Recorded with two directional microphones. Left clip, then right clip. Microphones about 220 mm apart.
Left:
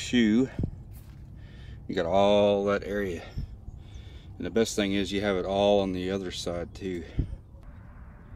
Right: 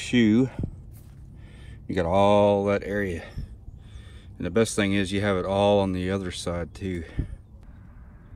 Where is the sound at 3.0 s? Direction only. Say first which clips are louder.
Right 3 dB; 15° right (ahead or behind).